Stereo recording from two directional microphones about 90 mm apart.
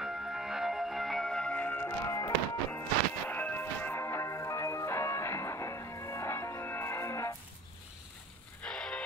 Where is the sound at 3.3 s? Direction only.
20° left (ahead or behind).